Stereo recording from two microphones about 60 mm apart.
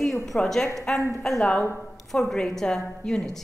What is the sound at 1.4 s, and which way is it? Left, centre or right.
Speech, left.